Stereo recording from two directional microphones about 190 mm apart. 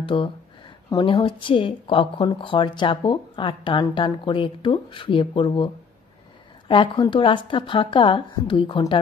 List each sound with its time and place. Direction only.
0.0 s a woman's voice: 25° left (ahead or behind)
6.7 s speech: 25° left (ahead or behind)